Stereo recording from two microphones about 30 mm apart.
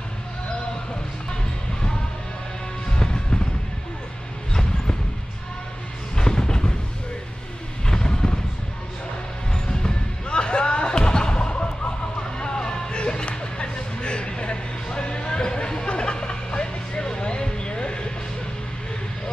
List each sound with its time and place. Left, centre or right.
3.0 s music: left
6.1 s music: left
7.8 s vehicle: left
9.5 s basketball bounce: left
12.2 s a sound: left